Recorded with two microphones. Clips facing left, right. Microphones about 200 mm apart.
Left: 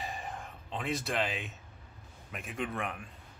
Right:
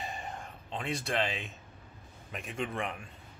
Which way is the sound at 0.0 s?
Centre (ahead or behind).